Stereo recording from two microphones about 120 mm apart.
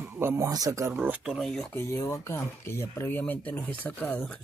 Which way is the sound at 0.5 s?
30° right (ahead or behind).